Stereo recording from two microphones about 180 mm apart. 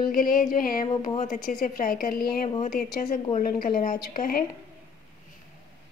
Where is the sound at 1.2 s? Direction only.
50° left (ahead or behind).